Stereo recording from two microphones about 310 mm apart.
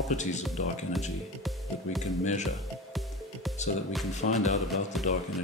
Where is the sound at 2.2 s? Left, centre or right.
Left.